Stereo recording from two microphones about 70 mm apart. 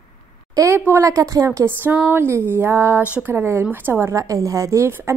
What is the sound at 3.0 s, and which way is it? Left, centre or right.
Speech, right.